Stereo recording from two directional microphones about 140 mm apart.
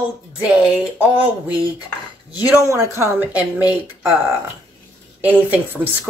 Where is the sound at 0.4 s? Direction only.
10° right (ahead or behind).